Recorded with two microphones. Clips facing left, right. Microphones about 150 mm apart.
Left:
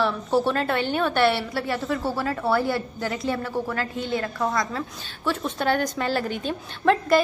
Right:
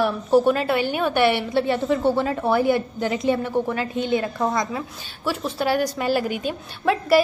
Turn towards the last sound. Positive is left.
turn(degrees=-5)  # may be behind; listen again after turning